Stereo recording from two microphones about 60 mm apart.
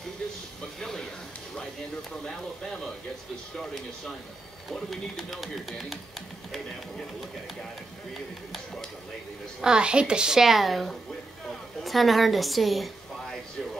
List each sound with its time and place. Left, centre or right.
0.7 s a sound: centre
2.2 s speech: centre
9.6 s a woman's voice: centre